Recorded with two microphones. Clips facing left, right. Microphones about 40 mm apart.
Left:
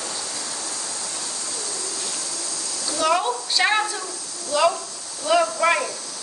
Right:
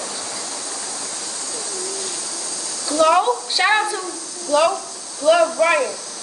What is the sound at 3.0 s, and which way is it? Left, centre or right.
Speech, centre.